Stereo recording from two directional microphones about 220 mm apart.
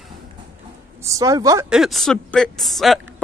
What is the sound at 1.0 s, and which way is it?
Speech, 15° right (ahead or behind).